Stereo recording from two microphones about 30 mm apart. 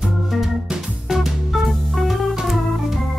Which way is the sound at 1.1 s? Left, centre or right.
Centre.